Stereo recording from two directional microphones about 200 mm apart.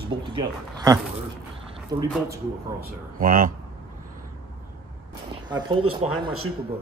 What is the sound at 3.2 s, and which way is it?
Speech, 45° right (ahead or behind).